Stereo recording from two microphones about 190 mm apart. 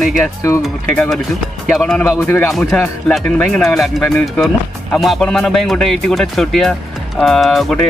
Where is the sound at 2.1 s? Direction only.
15° left (ahead or behind).